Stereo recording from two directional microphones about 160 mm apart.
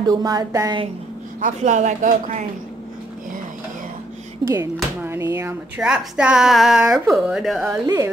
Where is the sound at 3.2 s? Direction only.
60° right (ahead or behind).